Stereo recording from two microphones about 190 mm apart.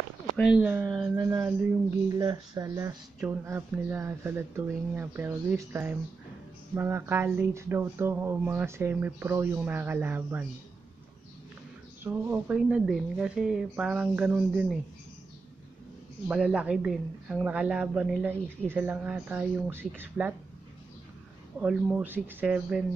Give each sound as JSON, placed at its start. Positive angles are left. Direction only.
{"t": 0.4, "sound": "a woman's voice", "side_deg": -5}
{"t": 12.0, "sound": "a woman's voice", "side_deg": -10}
{"t": 16.3, "sound": "a woman's voice", "side_deg": -5}
{"t": 21.5, "sound": "a woman's voice", "side_deg": -5}